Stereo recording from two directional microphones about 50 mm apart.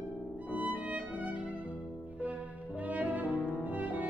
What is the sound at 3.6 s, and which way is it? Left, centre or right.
Music, right.